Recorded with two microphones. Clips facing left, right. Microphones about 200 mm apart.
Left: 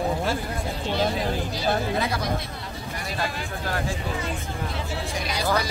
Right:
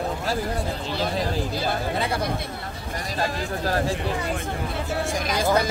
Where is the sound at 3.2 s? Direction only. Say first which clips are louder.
Right 5 dB; 35° right (ahead or behind).